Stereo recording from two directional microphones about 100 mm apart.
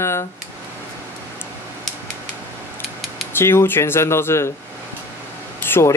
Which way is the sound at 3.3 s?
25° left (ahead or behind).